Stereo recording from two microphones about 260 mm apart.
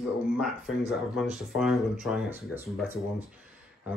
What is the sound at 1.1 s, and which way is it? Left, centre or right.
Speech, centre.